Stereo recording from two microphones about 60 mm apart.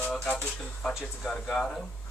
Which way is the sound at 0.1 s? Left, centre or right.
Centre.